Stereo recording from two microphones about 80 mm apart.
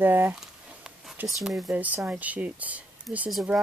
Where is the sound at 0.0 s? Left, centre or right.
Right.